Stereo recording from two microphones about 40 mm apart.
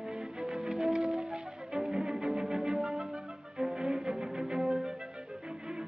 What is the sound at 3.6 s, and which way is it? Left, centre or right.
Cello, centre.